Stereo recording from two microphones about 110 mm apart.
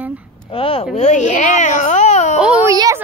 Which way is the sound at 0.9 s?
90° left.